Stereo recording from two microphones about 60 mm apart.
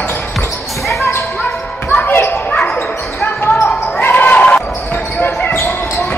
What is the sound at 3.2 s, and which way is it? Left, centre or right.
Basketball bounce, left.